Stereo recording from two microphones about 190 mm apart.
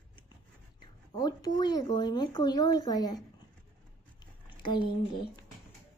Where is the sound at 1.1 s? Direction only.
20° left (ahead or behind).